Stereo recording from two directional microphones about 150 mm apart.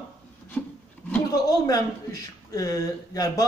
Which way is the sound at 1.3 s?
25° left (ahead or behind).